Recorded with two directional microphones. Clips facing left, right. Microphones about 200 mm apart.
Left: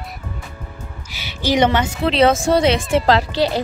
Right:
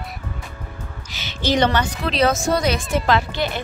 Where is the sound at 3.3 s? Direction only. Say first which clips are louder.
Left 6 dB; 90° left.